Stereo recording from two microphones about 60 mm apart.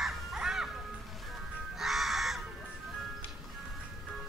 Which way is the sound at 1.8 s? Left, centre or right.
Centre.